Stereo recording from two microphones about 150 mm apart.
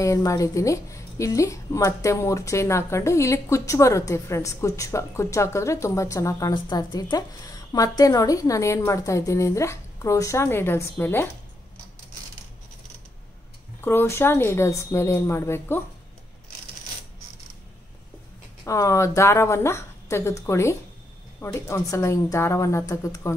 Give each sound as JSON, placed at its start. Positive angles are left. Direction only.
{"t": 0.0, "sound": "a woman's voice", "side_deg": 20}
{"t": 13.7, "sound": "a woman's voice", "side_deg": 15}
{"t": 18.6, "sound": "a woman's voice", "side_deg": 20}